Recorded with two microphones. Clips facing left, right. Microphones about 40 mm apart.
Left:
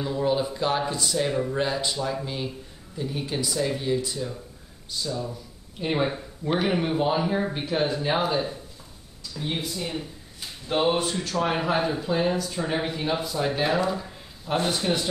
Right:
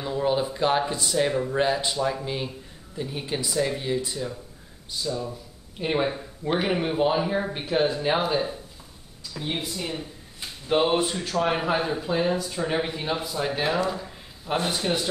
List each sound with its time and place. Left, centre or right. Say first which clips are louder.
0.0 s speech: even; centre